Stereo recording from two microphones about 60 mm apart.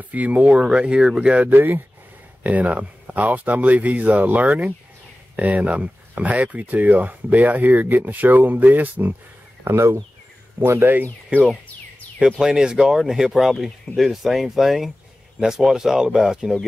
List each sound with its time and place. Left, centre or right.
0.0 s speech: right
0.5 s speech: centre
1.5 s speech: right
2.4 s speech: right
9.7 s speech: right
12.3 s speech: centre